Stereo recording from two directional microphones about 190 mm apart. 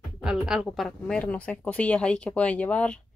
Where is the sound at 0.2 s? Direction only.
5° right (ahead or behind).